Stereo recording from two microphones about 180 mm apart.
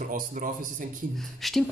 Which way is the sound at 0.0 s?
50° right (ahead or behind).